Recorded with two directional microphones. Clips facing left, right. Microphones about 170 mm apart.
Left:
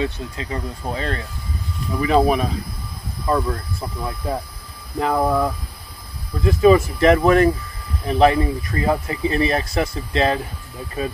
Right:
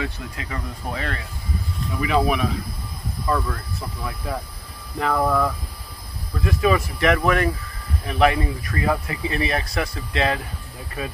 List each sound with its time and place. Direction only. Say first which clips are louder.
0.0 s speech: left 5 dB; 30° left (ahead or behind)